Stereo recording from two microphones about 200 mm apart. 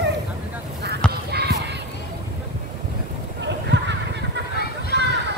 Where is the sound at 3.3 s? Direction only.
60° right (ahead or behind).